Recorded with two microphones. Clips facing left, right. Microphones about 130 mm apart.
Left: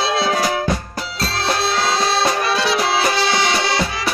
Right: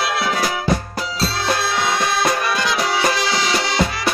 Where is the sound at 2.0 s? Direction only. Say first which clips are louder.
Left 1 dB; 30° left (ahead or behind).